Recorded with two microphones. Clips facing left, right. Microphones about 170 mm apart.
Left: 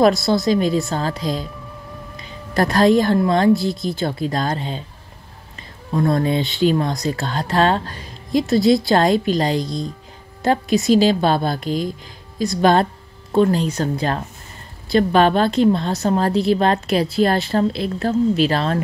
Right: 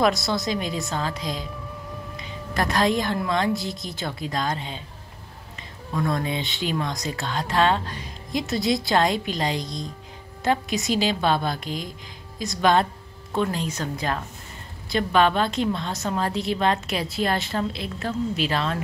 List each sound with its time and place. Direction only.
0.0 s speech: 35° left (ahead or behind)